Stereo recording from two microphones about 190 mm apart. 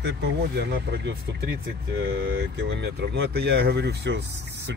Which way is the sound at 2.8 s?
60° right (ahead or behind).